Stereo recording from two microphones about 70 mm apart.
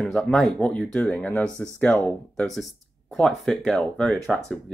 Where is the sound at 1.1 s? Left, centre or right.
Left.